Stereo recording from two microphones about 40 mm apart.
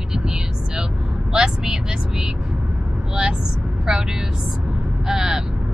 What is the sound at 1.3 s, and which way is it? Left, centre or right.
Vehicle, centre.